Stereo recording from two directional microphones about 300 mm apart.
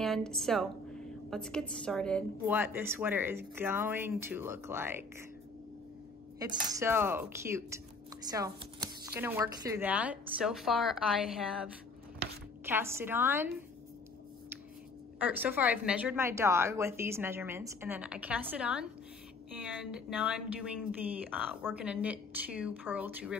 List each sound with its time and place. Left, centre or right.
0.0 s a woman's voice: centre
6.4 s a woman's voice: centre
15.1 s a woman's voice: centre